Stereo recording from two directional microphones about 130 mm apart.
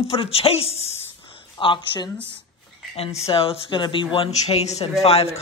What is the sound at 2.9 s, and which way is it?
Speech, 50° left (ahead or behind).